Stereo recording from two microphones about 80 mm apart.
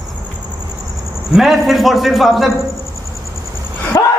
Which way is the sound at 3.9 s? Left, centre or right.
Left.